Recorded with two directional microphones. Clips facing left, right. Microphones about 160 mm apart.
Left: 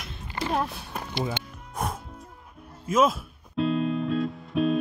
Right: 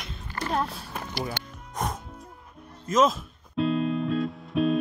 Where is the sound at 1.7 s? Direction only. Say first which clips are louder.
Even; 5° left (ahead or behind).